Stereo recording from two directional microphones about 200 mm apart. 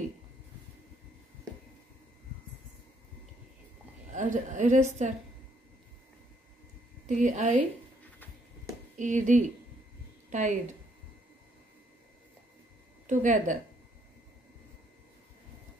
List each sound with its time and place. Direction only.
4.1 s a woman's voice: 40° right (ahead or behind)
7.1 s a woman's voice: 40° right (ahead or behind)
8.9 s a woman's voice: 40° right (ahead or behind)
13.0 s speech: 40° right (ahead or behind)